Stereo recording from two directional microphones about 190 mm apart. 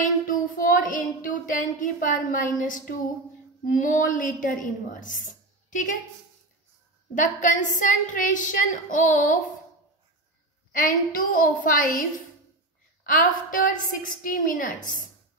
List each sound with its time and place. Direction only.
0.0 s child singing: 45° left (ahead or behind)
3.7 s speech: 45° left (ahead or behind)
7.2 s speech: 45° left (ahead or behind)
10.7 s speech: 45° left (ahead or behind)